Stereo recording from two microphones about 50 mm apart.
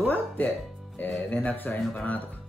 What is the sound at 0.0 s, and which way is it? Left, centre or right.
Speech, left.